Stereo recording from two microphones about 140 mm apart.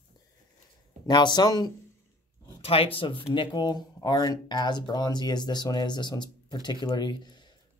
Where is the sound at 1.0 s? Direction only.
30° left (ahead or behind).